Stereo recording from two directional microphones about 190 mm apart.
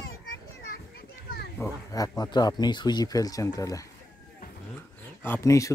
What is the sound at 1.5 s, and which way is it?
Speech, 20° left (ahead or behind).